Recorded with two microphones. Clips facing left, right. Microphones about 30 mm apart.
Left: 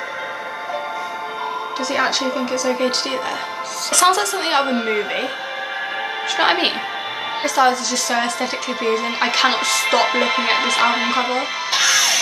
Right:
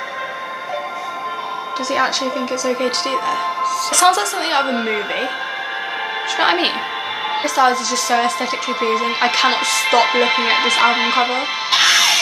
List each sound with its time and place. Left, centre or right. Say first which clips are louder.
1.9 s a woman's voice: right 1 dB; centre
6.3 s a woman's voice: right 1 dB; centre
10.0 s speech: right 2 dB; centre
11.7 s music: right 4 dB; right